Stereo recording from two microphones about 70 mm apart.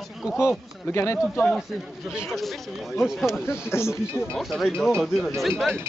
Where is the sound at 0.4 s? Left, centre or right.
Left.